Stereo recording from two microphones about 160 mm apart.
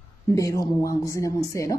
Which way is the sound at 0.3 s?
20° left (ahead or behind).